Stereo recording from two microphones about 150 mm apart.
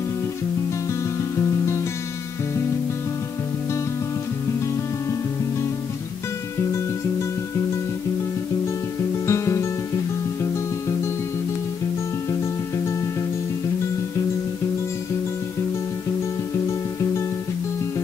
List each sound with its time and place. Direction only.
9.2 s music: 20° left (ahead or behind)
12.3 s music: 20° left (ahead or behind)